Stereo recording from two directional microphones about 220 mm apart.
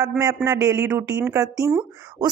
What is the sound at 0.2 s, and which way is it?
A man's voice, 15° right (ahead or behind).